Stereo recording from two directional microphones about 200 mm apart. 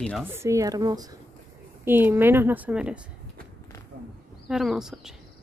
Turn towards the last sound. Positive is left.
turn(degrees=0)  # may be behind; listen again after turning